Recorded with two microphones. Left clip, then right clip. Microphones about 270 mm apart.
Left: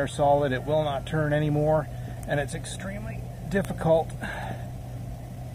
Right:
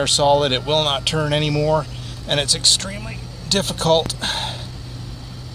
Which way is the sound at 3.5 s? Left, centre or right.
Right.